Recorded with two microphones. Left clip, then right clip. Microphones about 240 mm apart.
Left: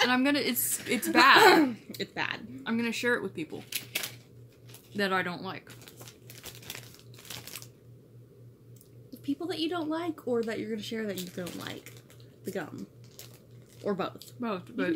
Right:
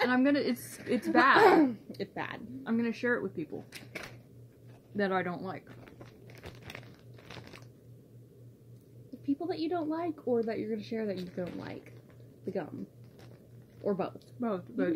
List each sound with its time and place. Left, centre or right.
0.0 s speech: centre
4.9 s speech: centre
6.4 s crumpling: centre
9.2 s speech: centre
13.8 s speech: centre